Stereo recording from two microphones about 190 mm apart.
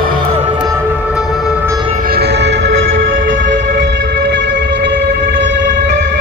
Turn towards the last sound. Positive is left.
turn(degrees=-65)  # may be behind; listen again after turning